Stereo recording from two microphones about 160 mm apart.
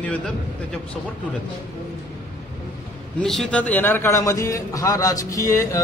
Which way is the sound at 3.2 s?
5° left (ahead or behind).